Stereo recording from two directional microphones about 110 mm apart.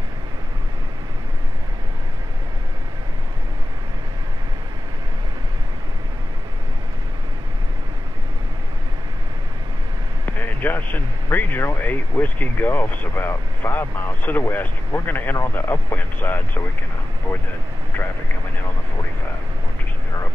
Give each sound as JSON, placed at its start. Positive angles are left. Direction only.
{"t": 10.6, "sound": "speech", "side_deg": 15}